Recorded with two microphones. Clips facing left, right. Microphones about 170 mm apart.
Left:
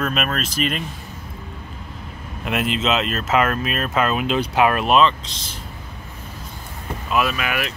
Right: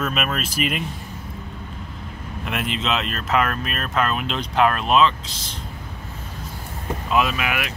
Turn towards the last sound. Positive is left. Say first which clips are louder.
# left 1 dB
turn(degrees=-15)  # may be behind; listen again after turning